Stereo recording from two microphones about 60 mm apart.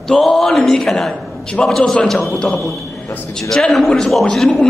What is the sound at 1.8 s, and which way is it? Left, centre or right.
A man's voice, centre.